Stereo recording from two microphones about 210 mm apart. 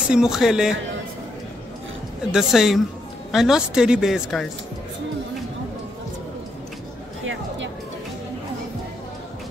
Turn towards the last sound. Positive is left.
turn(degrees=-65)  # may be behind; listen again after turning